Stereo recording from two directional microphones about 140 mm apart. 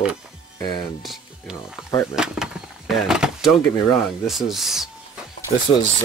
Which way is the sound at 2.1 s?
5° right (ahead or behind).